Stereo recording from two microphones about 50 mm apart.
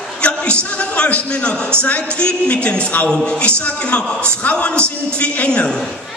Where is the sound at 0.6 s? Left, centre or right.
Left.